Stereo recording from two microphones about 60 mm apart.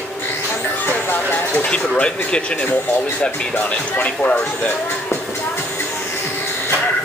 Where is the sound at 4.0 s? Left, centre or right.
Left.